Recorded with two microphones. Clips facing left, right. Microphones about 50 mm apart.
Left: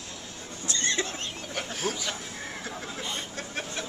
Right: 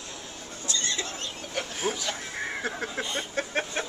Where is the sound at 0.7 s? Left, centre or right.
Left.